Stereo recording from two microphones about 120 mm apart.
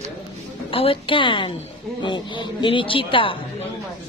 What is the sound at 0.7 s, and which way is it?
A man's voice, 50° left (ahead or behind).